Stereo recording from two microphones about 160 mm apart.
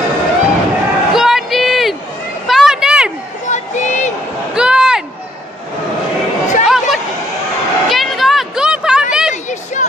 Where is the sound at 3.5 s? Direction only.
45° left (ahead or behind).